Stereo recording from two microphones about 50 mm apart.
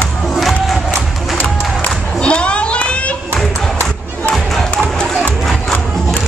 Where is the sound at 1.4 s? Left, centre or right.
Left.